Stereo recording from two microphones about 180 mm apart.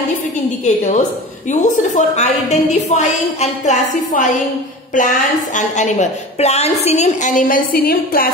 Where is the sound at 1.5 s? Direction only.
40° left (ahead or behind).